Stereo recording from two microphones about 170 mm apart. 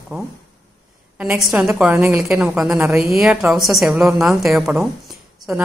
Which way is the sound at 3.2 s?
5° right (ahead or behind).